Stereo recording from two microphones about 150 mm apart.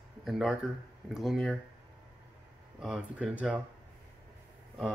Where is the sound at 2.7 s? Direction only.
5° right (ahead or behind).